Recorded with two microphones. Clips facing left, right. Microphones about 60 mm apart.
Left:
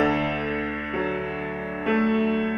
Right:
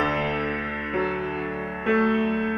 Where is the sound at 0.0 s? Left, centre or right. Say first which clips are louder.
Left 1 dB; right.